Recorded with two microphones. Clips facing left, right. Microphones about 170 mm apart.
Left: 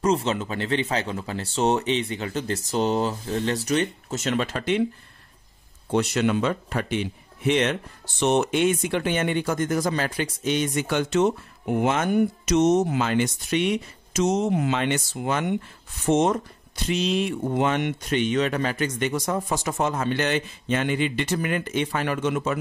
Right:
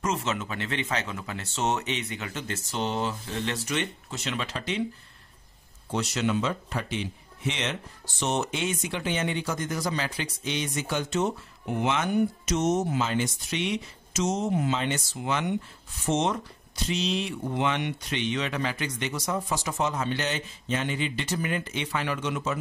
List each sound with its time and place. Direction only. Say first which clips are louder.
0.0 s speech: left 6 dB; 35° left (ahead or behind); by 4.8 s 55° left (ahead or behind)
5.9 s speech: left 5 dB; 55° left (ahead or behind)
12.4 s speech: left 6 dB; 70° left (ahead or behind); by 22.6 s 55° left (ahead or behind)